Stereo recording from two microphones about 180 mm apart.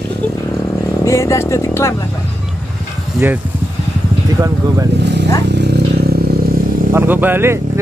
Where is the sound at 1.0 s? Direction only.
15° left (ahead or behind).